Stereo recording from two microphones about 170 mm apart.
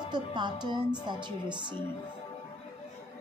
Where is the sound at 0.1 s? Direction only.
25° right (ahead or behind).